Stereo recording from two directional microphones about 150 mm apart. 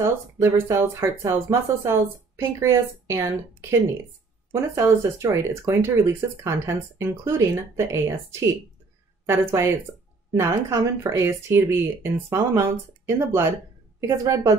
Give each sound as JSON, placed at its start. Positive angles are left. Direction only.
{"t": 0.0, "sound": "speech", "side_deg": -15}